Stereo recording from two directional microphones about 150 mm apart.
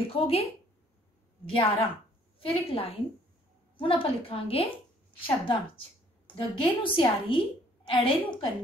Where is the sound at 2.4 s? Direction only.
40° left (ahead or behind).